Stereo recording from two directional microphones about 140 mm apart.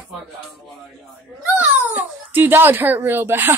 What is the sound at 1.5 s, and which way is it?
Speech, 15° right (ahead or behind).